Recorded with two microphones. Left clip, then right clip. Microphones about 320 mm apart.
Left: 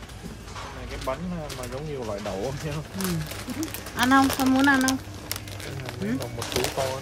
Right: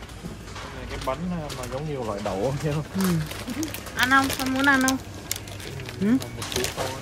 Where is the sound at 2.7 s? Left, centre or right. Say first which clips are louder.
Right 5 dB; centre.